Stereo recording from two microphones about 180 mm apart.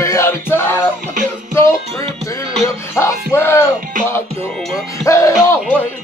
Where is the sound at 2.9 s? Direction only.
15° left (ahead or behind).